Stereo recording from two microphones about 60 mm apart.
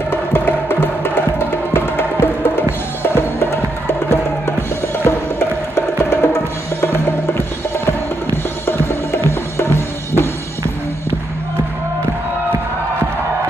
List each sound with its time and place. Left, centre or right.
0.1 s music: left